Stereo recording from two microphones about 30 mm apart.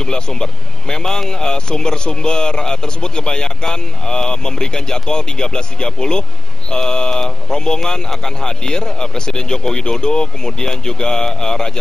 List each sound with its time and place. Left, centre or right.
0.0 s speech: left